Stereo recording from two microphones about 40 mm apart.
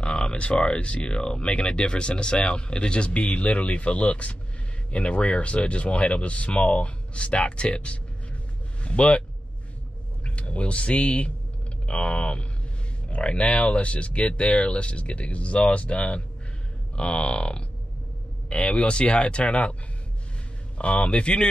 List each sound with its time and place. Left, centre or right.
0.0 s speech: left
10.2 s speech: left